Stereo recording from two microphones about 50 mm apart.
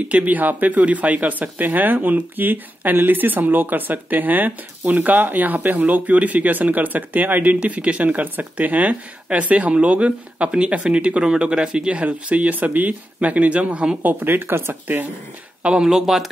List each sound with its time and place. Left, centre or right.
0.1 s speech: right
14.0 s speech: right
15.7 s speech: centre